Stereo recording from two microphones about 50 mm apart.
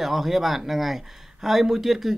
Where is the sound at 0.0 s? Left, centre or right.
Centre.